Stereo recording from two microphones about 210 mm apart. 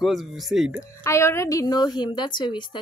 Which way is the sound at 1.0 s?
10° left (ahead or behind).